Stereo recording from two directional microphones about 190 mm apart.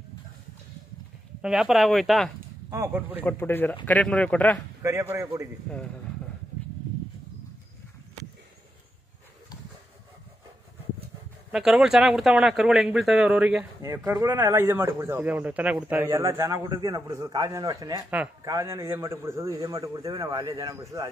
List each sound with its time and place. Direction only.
1.4 s a man's voice: 5° right (ahead or behind)
2.7 s speech: 10° right (ahead or behind)
3.3 s speech: 10° left (ahead or behind)
4.8 s speech: 15° right (ahead or behind)
11.5 s a man's voice: 5° right (ahead or behind)
13.7 s speech: 15° right (ahead or behind)